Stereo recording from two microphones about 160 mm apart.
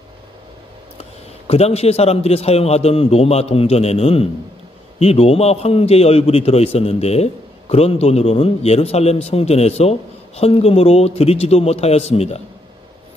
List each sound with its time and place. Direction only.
1.5 s a man's voice: 40° left (ahead or behind)